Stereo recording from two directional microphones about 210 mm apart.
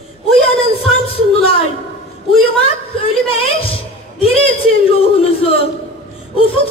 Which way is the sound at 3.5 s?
25° left (ahead or behind).